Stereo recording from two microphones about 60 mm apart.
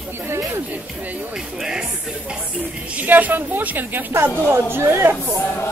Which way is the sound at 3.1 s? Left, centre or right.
Right.